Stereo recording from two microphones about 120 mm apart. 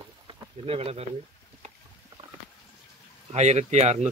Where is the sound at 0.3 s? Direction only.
55° right (ahead or behind).